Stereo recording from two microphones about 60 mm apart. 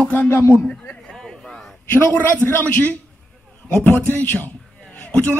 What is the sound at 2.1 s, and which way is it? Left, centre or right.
Speech, left.